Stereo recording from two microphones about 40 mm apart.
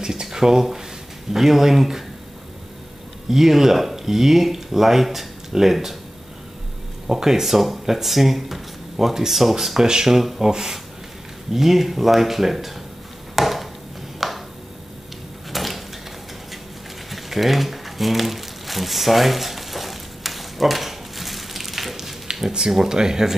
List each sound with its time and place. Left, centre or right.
0.0 s a sound: centre
1.3 s speech: centre
3.3 s speech: centre
7.1 s speech: centre
13.4 s chop: centre
14.2 s a sound: centre
15.5 s a sound: centre
17.1 s crumpling: centre
22.3 s speech: centre